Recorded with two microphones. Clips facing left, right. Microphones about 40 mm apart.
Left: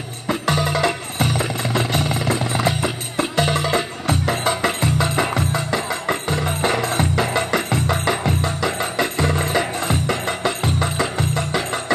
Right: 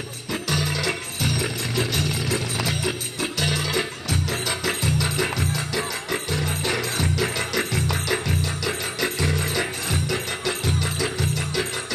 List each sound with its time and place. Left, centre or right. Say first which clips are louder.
0.3 s music: left 6 dB; left